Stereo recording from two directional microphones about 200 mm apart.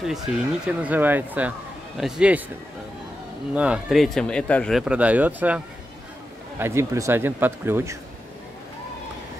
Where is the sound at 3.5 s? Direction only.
5° right (ahead or behind).